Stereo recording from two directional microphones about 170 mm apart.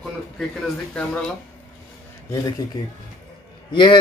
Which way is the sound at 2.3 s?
20° left (ahead or behind).